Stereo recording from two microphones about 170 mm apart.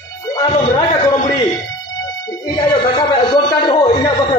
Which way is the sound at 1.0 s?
25° left (ahead or behind).